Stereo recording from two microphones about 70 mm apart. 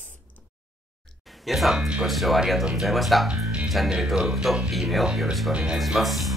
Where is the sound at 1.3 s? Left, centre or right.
Centre.